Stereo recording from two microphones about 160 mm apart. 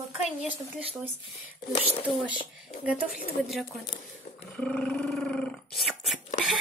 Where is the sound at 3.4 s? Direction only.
5° right (ahead or behind).